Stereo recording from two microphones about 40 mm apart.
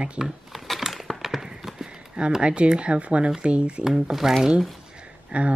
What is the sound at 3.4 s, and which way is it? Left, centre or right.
Speech, right.